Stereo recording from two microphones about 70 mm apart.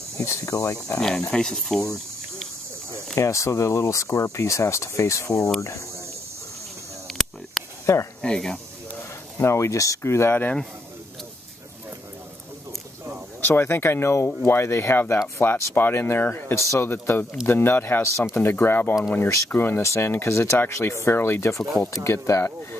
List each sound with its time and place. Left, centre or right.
0.2 s speech: left
1.0 s speech: centre
3.2 s speech: left
7.8 s speech: left
8.2 s speech: centre
9.4 s speech: left
13.5 s speech: left
19.8 s speech: left